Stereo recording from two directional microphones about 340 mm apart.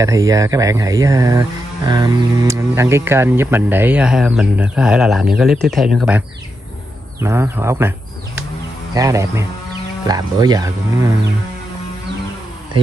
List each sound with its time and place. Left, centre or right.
0.0 s speech: centre
8.9 s speech: centre